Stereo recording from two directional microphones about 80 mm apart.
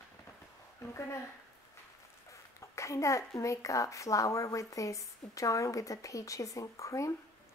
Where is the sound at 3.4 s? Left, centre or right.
Left.